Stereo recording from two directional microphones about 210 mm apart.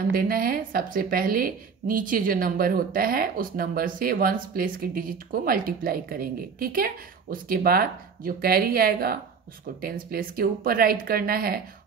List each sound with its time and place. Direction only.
0.1 s a woman's voice: 45° right (ahead or behind)